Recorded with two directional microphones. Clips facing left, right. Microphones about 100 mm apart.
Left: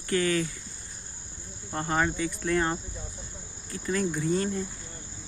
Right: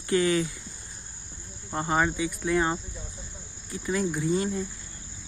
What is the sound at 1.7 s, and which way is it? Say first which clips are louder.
Cricket: right 2 dB; 15° right (ahead or behind).